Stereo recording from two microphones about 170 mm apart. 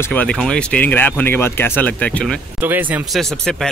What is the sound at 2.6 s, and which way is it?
Speech, 10° right (ahead or behind).